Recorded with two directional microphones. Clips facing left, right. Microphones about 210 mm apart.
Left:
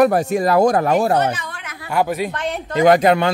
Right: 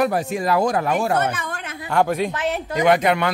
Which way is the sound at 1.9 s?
5° left (ahead or behind).